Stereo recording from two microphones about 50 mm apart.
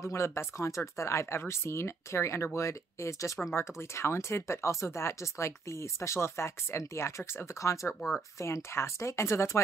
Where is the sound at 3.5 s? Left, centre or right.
Left.